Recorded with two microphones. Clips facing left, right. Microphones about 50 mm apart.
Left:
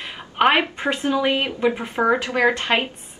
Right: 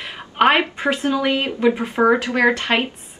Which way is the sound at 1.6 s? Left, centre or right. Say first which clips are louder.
Right 4 dB; centre.